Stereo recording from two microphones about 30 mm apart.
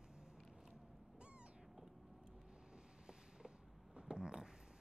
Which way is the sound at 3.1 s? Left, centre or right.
Right.